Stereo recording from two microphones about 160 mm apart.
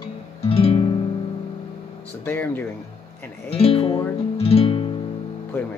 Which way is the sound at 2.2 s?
10° left (ahead or behind).